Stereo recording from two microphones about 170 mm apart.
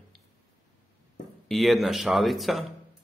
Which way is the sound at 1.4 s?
Centre (ahead or behind).